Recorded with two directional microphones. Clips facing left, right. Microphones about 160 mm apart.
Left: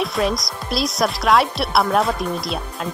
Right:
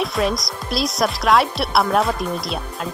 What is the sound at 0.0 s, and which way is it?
Speech, centre (ahead or behind).